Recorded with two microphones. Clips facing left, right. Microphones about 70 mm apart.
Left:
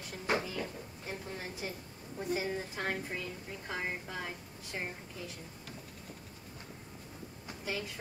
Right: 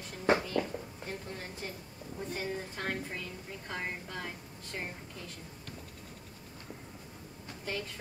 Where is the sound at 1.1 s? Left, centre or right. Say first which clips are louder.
Even; centre.